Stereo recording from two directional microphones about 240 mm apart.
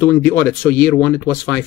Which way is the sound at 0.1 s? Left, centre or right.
Centre.